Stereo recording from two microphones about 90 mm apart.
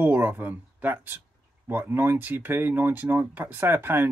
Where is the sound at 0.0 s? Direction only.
20° right (ahead or behind).